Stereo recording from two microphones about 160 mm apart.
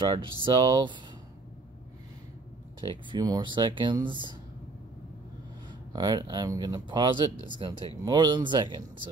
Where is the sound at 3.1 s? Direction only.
25° right (ahead or behind).